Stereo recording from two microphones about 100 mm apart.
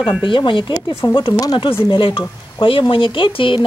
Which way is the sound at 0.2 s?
55° left (ahead or behind).